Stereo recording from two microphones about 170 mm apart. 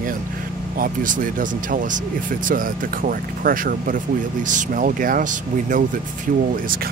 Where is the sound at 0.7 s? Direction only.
55° right (ahead or behind).